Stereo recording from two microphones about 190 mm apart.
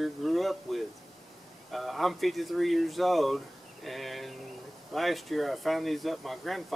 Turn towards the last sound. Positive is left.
turn(degrees=0)  # may be behind; listen again after turning